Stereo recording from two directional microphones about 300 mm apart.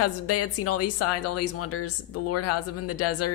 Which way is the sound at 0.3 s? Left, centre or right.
Left.